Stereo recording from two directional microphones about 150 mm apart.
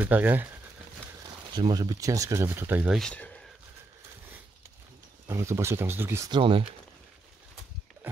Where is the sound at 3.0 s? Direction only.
5° left (ahead or behind).